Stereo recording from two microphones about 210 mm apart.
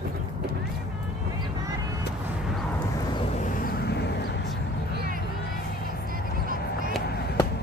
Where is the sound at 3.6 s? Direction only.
50° left (ahead or behind).